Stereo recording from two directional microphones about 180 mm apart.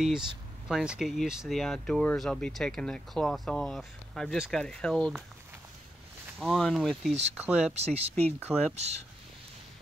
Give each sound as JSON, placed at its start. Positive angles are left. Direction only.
{"t": 0.7, "sound": "speech", "side_deg": 0}
{"t": 6.4, "sound": "speech", "side_deg": 0}
{"t": 7.7, "sound": "speech", "side_deg": -35}